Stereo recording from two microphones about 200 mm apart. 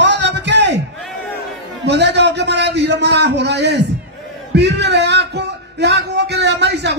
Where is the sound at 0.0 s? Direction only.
60° right (ahead or behind).